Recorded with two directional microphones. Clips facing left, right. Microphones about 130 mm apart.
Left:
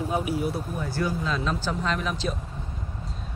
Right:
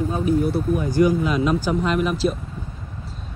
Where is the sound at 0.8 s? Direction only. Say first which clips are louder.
Right 11 dB; 15° right (ahead or behind).